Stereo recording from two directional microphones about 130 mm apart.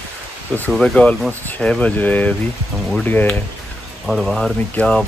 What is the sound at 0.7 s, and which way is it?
Speech, 5° left (ahead or behind).